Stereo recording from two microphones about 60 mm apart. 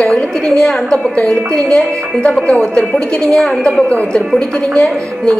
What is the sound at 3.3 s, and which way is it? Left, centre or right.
Speech, centre.